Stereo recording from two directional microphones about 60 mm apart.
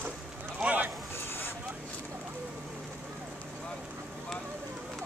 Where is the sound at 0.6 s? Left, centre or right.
Right.